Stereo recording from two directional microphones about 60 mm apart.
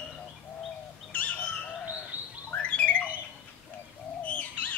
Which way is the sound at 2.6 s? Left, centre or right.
Left.